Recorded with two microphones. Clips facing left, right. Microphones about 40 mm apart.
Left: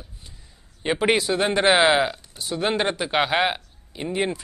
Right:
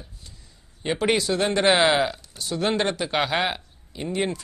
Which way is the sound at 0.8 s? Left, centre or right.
Centre.